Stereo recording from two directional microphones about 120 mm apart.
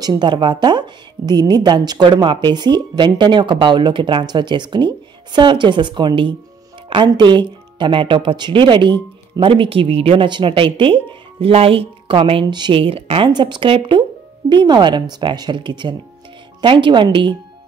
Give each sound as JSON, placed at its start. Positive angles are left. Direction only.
{"t": 0.0, "sound": "a woman's voice", "side_deg": -35}
{"t": 13.3, "sound": "a woman's voice", "side_deg": -40}